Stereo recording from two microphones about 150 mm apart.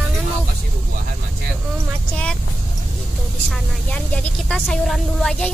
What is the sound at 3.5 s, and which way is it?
Speech, 5° left (ahead or behind).